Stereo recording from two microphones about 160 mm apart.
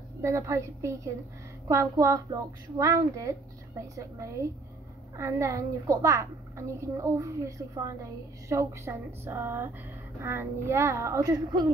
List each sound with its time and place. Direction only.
0.2 s a woman's voice: 20° right (ahead or behind)